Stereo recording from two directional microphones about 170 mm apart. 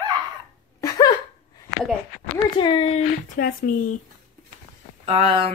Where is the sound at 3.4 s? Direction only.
55° left (ahead or behind).